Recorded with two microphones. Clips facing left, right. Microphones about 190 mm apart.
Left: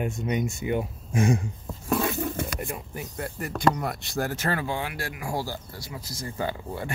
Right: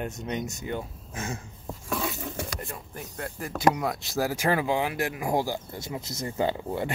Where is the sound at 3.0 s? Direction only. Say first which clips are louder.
Even; centre (ahead or behind).